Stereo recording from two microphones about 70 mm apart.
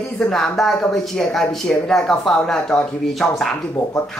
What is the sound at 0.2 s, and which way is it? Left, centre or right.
Speech, centre.